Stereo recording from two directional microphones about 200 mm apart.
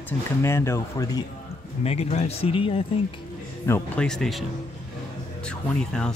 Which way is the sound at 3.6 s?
10° left (ahead or behind).